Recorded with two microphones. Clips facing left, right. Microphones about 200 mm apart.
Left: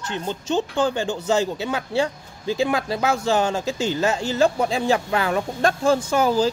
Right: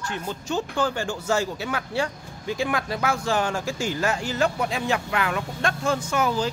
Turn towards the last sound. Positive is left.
turn(degrees=30)  # may be behind; listen again after turning